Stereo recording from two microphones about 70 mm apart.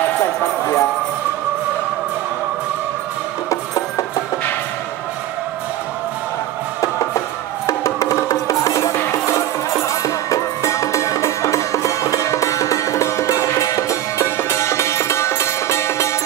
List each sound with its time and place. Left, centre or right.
0.4 s music: left
6.8 s music: left